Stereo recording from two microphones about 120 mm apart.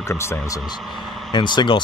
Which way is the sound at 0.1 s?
20° left (ahead or behind).